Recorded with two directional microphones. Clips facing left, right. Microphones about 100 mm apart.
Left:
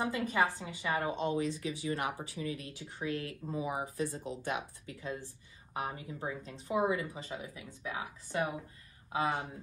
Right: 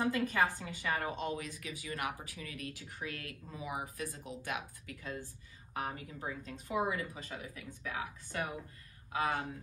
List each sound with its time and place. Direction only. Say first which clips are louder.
0.0 s a woman's voice: even; 15° left (ahead or behind)